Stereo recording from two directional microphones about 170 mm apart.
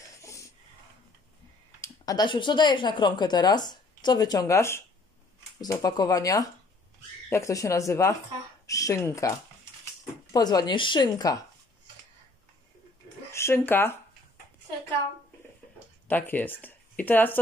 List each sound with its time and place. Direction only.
0.2 s a sound: 20° left (ahead or behind)
1.8 s speech: 25° left (ahead or behind)
10.3 s speech: 20° left (ahead or behind)
13.3 s speech: 15° left (ahead or behind)
16.1 s speech: 10° left (ahead or behind)